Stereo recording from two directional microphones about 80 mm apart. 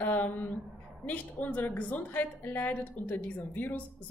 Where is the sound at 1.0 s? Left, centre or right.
Centre.